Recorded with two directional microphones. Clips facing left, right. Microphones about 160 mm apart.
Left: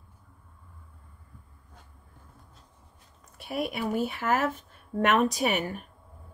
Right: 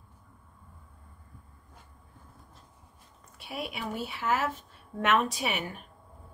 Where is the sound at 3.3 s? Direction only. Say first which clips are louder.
Left 6 dB; 45° left (ahead or behind).